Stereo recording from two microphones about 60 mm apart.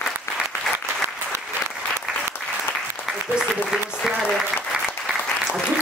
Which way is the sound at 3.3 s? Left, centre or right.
Centre.